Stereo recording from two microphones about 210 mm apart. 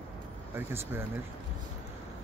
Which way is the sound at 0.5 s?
10° right (ahead or behind).